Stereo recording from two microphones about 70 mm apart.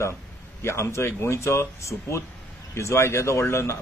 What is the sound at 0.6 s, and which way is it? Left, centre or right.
A man's voice, left.